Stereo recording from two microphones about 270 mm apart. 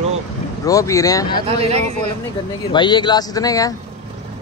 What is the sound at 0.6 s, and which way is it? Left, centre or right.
Speech, centre.